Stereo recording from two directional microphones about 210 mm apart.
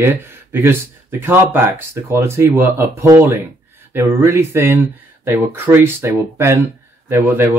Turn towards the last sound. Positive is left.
turn(degrees=-10)  # may be behind; listen again after turning